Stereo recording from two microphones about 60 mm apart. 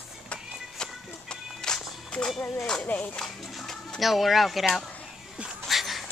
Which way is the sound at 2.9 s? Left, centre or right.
Left.